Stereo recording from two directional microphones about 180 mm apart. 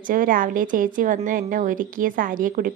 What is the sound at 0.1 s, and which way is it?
A woman's voice, 50° right (ahead or behind).